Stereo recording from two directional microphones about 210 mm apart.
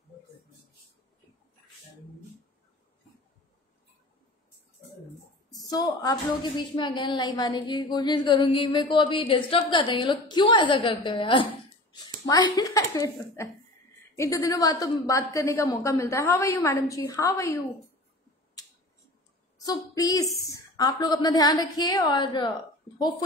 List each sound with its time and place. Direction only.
5.5 s a woman's voice: 15° left (ahead or behind)
19.6 s a woman's voice: 15° left (ahead or behind)